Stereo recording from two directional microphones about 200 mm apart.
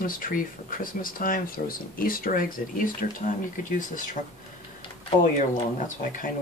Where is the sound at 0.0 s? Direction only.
45° left (ahead or behind).